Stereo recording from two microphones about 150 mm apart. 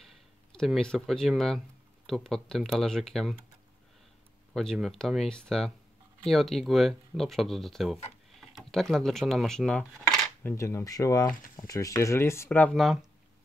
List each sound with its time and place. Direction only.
0.0 s speech: 5° left (ahead or behind)
4.6 s speech: centre (ahead or behind)
10.5 s speech: 20° left (ahead or behind); by 13.0 s centre (ahead or behind)